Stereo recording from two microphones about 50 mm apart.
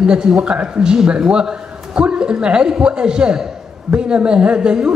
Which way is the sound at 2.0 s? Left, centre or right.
Centre.